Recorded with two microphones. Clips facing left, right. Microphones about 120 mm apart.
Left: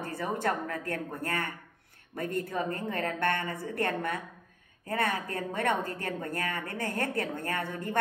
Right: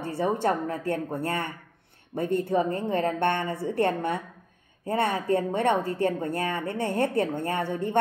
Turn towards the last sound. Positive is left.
turn(degrees=-25)  # may be behind; listen again after turning